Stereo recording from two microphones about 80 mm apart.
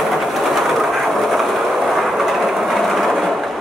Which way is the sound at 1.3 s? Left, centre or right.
Centre.